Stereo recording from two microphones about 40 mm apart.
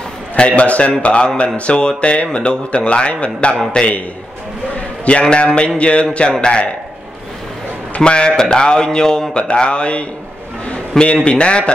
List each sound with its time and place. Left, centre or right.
0.4 s a man's voice: left
3.8 s speech: centre
4.7 s a sound: left
5.3 s a man's voice: left
8.0 s speech: left
10.6 s a sound: left
11.2 s speech: left